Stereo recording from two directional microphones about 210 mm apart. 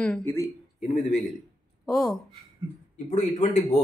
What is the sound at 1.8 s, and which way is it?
Speech, centre (ahead or behind).